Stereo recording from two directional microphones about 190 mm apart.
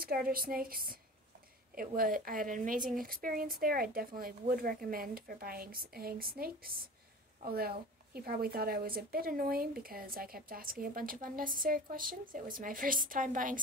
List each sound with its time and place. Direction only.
0.0 s a woman's voice: 50° right (ahead or behind)